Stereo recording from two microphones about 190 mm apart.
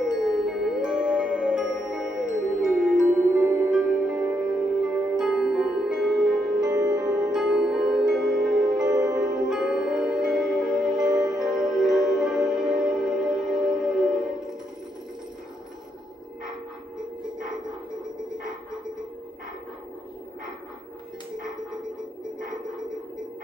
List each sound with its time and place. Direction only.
0.0 s music: centre (ahead or behind)
8.8 s music: 20° right (ahead or behind)
9.2 s music: 5° right (ahead or behind)